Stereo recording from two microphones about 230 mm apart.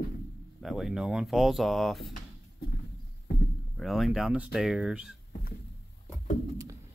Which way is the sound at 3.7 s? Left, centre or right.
Centre.